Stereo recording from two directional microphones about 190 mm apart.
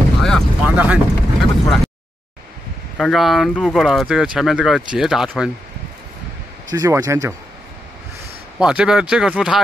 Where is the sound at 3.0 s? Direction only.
Centre (ahead or behind).